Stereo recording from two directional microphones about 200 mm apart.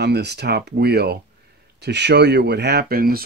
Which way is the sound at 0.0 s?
55° right (ahead or behind).